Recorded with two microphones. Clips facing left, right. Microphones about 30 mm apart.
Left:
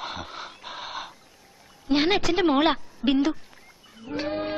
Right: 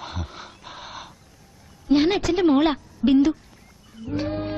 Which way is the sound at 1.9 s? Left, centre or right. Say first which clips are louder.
Right 3 dB; centre.